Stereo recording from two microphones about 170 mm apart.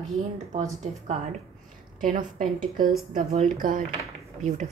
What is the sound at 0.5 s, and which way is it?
Speech, 40° right (ahead or behind).